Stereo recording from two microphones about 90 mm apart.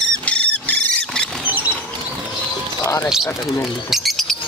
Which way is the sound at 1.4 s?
20° right (ahead or behind).